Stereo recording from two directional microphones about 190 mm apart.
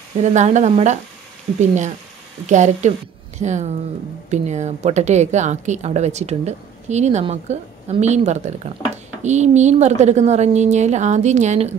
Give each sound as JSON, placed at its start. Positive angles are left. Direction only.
{"t": 0.2, "sound": "speech", "side_deg": -40}